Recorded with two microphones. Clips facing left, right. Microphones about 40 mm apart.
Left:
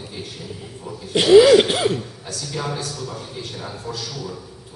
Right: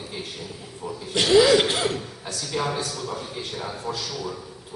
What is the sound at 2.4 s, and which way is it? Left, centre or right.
A man's voice, centre.